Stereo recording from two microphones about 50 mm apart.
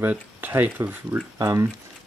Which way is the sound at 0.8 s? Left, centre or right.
Right.